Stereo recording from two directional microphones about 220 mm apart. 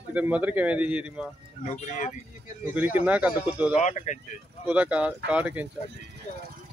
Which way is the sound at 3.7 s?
35° left (ahead or behind).